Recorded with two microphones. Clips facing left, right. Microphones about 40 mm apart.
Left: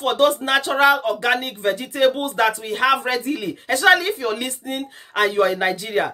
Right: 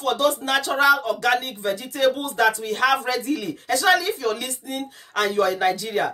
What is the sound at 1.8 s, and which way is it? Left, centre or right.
Speech, left.